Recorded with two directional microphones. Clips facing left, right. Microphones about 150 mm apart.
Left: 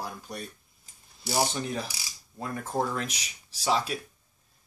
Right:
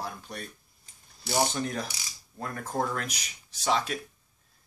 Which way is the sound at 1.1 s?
Centre (ahead or behind).